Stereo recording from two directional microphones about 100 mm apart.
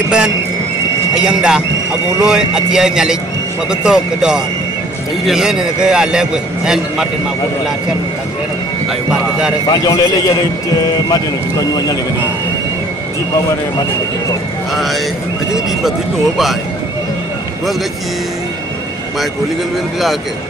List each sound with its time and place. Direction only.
1.1 s a man's voice: 5° right (ahead or behind)
9.7 s speech: 35° left (ahead or behind)